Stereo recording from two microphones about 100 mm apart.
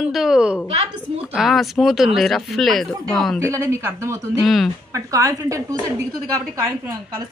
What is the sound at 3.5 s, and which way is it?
Speech, 30° right (ahead or behind).